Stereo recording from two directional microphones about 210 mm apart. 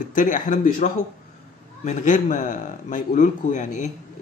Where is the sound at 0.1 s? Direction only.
40° left (ahead or behind).